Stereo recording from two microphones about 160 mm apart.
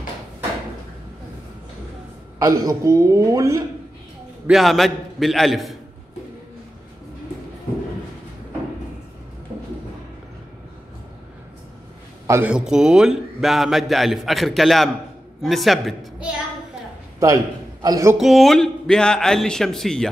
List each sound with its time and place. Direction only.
2.3 s a woman's voice: 20° right (ahead or behind)
4.5 s a man's voice: centre (ahead or behind)
12.3 s a man's voice: 10° right (ahead or behind)
17.8 s a woman's voice: 20° right (ahead or behind)
18.1 s a man's voice: centre (ahead or behind)